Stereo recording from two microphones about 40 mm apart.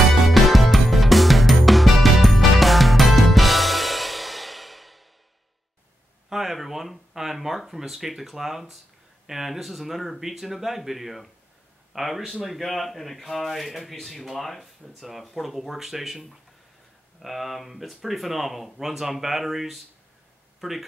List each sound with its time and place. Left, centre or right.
0.3 s music: centre
6.2 s speech: centre